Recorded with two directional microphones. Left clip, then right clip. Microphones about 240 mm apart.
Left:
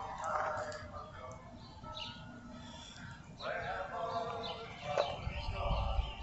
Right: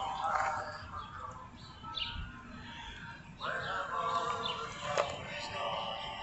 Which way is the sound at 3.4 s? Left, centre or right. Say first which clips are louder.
Right 3 dB; right.